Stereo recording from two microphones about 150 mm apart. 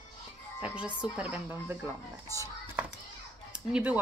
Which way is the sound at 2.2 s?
20° left (ahead or behind).